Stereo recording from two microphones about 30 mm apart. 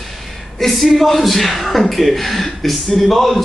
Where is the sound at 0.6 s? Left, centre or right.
Centre.